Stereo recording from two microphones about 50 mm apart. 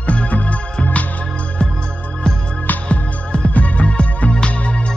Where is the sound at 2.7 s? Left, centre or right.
Left.